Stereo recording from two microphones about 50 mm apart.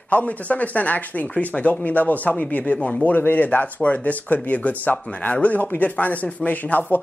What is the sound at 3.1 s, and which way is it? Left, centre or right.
Speech, left.